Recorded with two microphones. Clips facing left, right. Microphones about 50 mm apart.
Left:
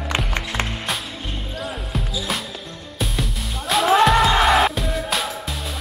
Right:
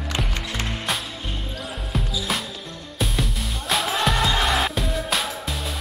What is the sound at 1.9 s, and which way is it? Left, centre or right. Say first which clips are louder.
Music: right 2 dB; centre.